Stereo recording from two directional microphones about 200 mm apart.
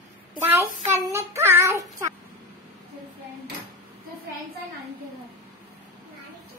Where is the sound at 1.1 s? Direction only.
15° right (ahead or behind).